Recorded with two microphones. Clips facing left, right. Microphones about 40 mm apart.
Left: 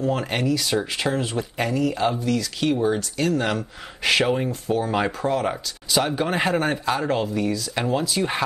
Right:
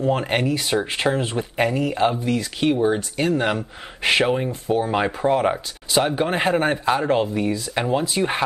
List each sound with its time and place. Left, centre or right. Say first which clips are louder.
0.0 s speech: right 3 dB; right